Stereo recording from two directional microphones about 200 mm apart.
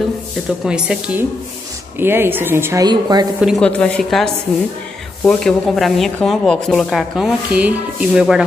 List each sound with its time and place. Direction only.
0.7 s speech: 5° right (ahead or behind); by 3.3 s 20° right (ahead or behind)
3.3 s speech: centre (ahead or behind)